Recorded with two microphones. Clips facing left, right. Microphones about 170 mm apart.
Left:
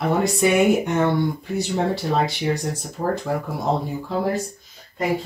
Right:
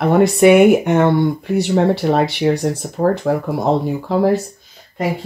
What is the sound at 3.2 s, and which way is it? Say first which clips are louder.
Speech: right 7 dB; 55° right (ahead or behind).